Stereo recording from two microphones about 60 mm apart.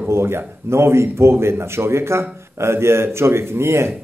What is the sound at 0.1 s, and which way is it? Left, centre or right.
Speech, right.